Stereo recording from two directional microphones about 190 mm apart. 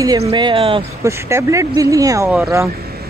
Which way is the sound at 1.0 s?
15° right (ahead or behind).